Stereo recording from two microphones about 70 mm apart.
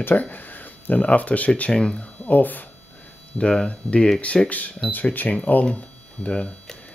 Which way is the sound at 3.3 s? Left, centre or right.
Centre.